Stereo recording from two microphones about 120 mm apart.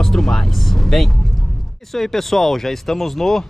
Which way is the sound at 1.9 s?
5° left (ahead or behind).